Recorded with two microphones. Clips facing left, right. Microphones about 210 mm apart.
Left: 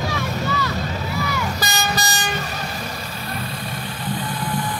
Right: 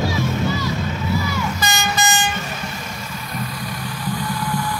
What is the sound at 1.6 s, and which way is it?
Vehicle, 35° left (ahead or behind).